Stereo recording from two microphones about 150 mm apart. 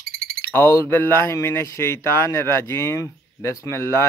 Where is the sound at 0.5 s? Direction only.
15° left (ahead or behind).